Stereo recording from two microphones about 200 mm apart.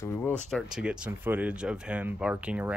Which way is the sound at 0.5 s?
5° right (ahead or behind).